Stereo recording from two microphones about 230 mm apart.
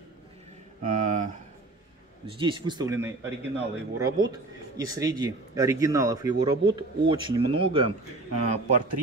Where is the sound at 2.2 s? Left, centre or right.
Right.